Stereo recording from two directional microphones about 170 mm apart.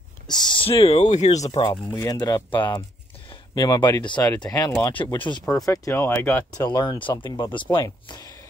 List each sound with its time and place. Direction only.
0.3 s speech: 25° left (ahead or behind); by 1.4 s 40° left (ahead or behind)
1.5 s speech: 25° left (ahead or behind)
5.4 s speech: 5° left (ahead or behind)
5.7 s speech: 15° left (ahead or behind)
6.5 s speech: 25° left (ahead or behind)
7.7 s a sound: 25° left (ahead or behind)